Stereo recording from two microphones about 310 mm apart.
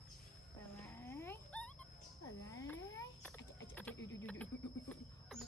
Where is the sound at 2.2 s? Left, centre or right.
Centre.